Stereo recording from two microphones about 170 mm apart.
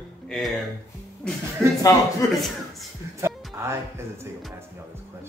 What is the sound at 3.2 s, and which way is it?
Music, 15° right (ahead or behind).